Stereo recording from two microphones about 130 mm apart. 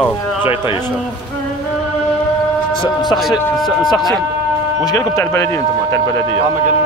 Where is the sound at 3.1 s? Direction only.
Centre (ahead or behind).